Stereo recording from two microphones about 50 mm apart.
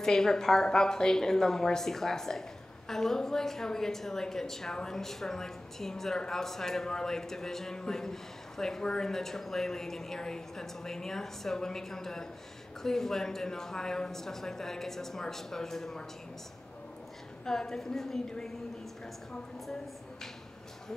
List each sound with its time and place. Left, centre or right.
0.0 s a woman's voice: centre
17.5 s a woman's voice: centre